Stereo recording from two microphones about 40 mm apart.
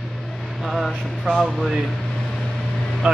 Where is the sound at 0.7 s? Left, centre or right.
Centre.